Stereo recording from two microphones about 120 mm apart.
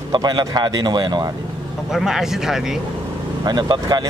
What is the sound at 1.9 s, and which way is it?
Speech, 5° right (ahead or behind).